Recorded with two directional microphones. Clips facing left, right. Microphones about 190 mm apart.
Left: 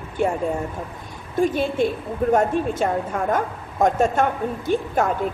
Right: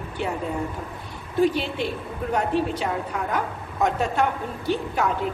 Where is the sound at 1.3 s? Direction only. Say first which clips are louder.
Left 2 dB; 50° left (ahead or behind).